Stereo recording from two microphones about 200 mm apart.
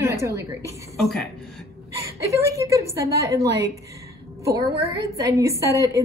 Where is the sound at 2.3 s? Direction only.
15° right (ahead or behind).